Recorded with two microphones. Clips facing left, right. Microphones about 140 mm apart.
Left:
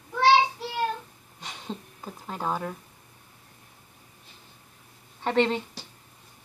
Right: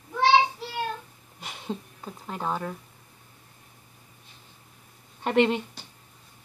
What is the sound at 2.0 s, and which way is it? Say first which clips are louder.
Speech: left 1 dB; centre (ahead or behind).